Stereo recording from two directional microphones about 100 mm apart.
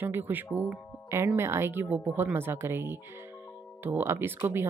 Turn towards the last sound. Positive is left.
turn(degrees=-25)  # may be behind; listen again after turning